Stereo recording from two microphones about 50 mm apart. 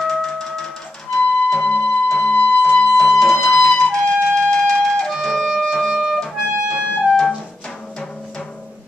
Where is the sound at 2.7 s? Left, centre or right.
Centre.